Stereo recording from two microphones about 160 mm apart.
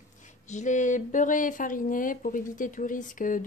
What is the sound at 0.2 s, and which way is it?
Speech, 50° left (ahead or behind).